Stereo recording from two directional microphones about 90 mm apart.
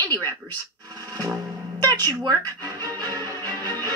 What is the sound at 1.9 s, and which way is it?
Speech, 45° right (ahead or behind).